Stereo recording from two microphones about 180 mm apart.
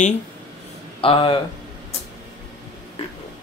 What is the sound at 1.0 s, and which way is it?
Speech, 30° left (ahead or behind).